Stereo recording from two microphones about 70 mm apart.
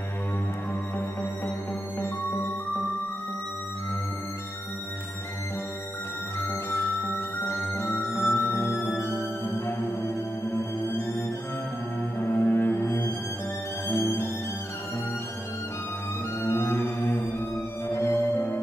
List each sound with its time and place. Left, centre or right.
7.4 s music: left
10.5 s music: left
12.2 s music: left
16.4 s music: left